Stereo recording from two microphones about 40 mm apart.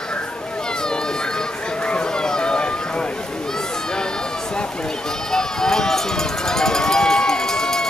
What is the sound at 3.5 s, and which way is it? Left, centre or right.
Run, centre.